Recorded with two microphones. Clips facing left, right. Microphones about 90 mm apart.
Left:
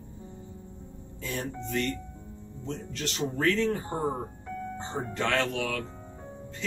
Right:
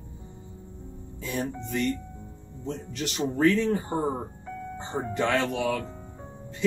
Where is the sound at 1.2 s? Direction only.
10° right (ahead or behind).